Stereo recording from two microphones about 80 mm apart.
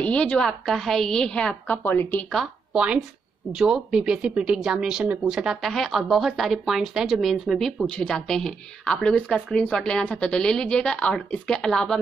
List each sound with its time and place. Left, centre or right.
0.0 s a woman's voice: centre
1.8 s a woman's voice: left
2.7 s speech: centre
5.6 s a woman's voice: centre